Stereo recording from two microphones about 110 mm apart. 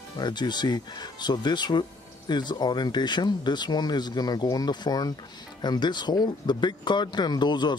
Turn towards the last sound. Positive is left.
turn(degrees=40)  # may be behind; listen again after turning